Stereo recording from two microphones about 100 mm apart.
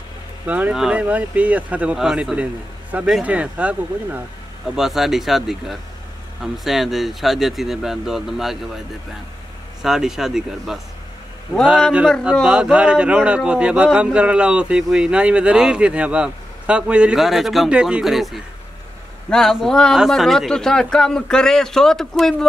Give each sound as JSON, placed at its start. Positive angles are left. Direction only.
{"t": 0.5, "sound": "speech", "side_deg": -15}
{"t": 9.8, "sound": "speech", "side_deg": -5}
{"t": 12.2, "sound": "speech", "side_deg": -5}